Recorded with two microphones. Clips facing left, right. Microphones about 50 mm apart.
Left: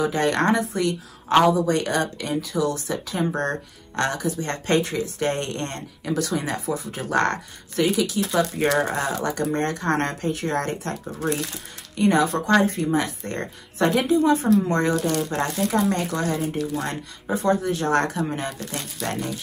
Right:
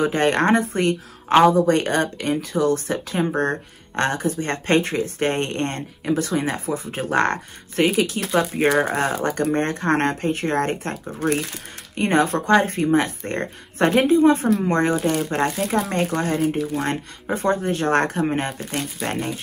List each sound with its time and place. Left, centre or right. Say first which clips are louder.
0.0 s speech: right 2 dB; right
8.3 s speech: right 4 dB; right
9.2 s speech: right 3 dB; right
15.0 s speech: right 2 dB; centre
15.9 s speech: right 2 dB; right
18.6 s speech: right 4 dB; right